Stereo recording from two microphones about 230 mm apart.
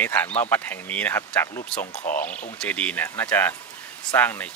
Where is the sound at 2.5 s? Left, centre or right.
Centre.